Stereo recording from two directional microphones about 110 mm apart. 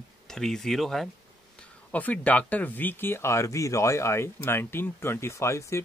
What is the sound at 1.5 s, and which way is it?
Speech, 15° left (ahead or behind).